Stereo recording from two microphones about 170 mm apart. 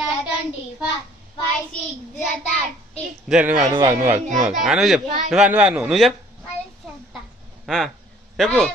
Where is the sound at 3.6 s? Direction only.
20° right (ahead or behind).